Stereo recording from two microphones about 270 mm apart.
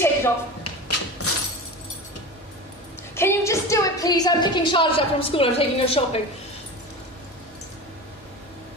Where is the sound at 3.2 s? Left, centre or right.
Centre.